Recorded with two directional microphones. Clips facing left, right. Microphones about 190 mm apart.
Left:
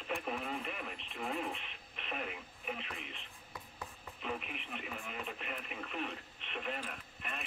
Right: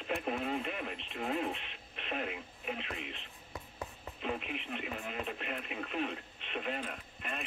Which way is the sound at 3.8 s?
30° right (ahead or behind).